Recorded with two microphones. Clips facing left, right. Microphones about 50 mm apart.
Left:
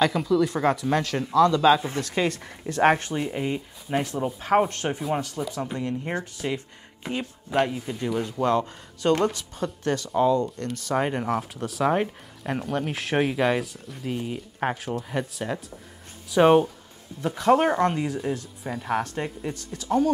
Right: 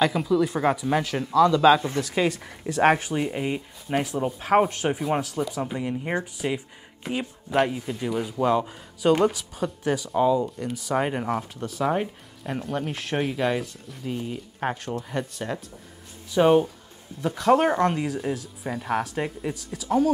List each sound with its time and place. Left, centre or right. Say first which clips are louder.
0.0 s speech: even; centre
16.3 s speech: left 1 dB; left
17.2 s speech: even; centre